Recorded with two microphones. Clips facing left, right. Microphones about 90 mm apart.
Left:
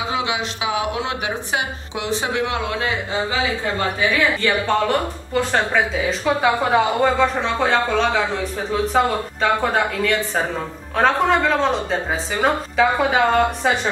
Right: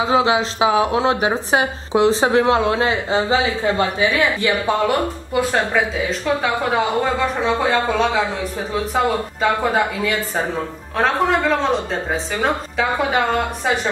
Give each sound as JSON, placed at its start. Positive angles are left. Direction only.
{"t": 0.1, "sound": "speech", "side_deg": -35}
{"t": 4.6, "sound": "speech", "side_deg": -10}